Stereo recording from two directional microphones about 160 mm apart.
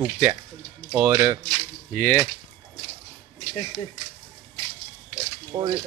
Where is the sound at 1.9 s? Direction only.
15° left (ahead or behind).